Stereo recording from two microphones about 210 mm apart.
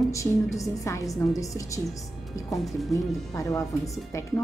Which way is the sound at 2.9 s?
15° left (ahead or behind).